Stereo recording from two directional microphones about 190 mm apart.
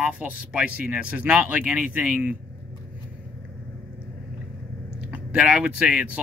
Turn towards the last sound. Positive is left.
turn(degrees=-5)  # may be behind; listen again after turning